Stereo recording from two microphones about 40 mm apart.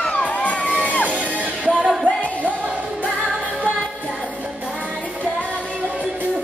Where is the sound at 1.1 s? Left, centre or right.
Right.